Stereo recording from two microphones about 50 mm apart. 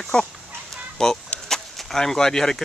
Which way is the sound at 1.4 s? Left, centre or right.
Centre.